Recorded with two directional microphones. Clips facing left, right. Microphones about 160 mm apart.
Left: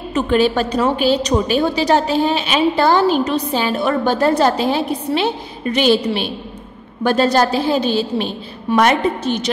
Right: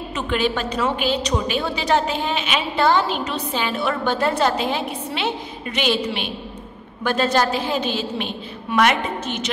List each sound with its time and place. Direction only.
0.1 s a woman's voice: 40° left (ahead or behind)